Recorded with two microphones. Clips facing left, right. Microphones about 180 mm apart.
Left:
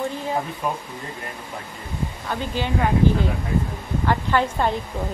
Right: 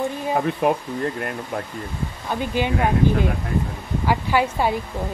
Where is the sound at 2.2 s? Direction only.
15° right (ahead or behind).